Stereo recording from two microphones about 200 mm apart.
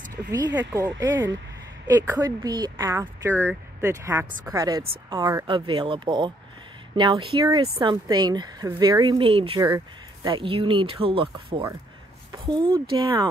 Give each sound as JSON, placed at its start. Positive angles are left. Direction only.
{"t": 0.3, "sound": "speech", "side_deg": -20}